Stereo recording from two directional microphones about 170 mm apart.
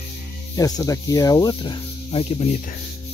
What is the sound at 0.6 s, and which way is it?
Speech, 20° left (ahead or behind).